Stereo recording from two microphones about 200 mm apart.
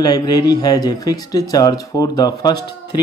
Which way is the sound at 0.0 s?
20° left (ahead or behind).